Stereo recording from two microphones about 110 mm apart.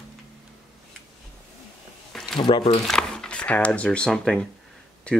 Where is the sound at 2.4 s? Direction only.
55° left (ahead or behind).